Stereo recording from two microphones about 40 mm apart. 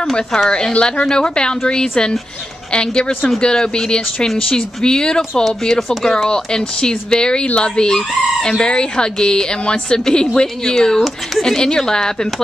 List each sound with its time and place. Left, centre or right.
0.5 s chicken: left
4.5 s speech: centre
5.4 s speech: centre
6.2 s chicken: centre
10.8 s speech: centre